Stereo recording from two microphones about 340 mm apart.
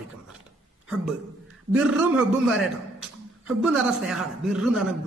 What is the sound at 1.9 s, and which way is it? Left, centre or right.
Speech, centre.